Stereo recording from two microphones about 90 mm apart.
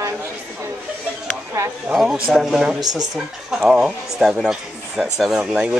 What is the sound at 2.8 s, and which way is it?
Speech, 45° right (ahead or behind).